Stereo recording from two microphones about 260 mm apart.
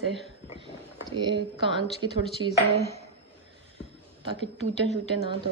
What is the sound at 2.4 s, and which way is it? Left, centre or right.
Speech, right.